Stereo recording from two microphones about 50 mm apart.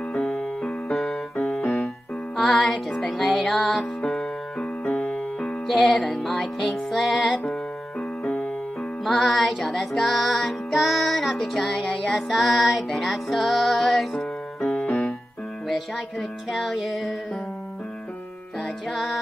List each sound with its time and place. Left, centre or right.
0.3 s music: centre
0.9 s keyboard: centre
2.3 s music: centre
5.7 s music: centre
8.2 s music: centre
9.0 s music: centre
14.6 s music: centre
14.9 s music: centre
18.6 s music: centre